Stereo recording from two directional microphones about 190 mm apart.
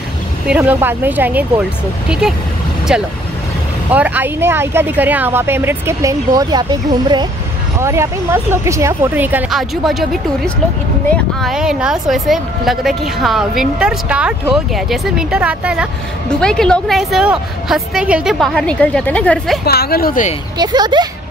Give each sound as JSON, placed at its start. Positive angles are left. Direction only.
{"t": 0.5, "sound": "speech", "side_deg": -10}
{"t": 2.9, "sound": "a woman's voice", "side_deg": -5}
{"t": 19.6, "sound": "speech", "side_deg": 55}
{"t": 20.5, "sound": "speech", "side_deg": -20}